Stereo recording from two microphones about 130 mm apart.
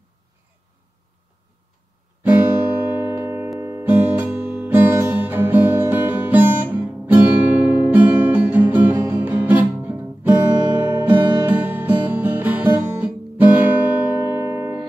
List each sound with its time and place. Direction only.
2.2 s music: 15° right (ahead or behind)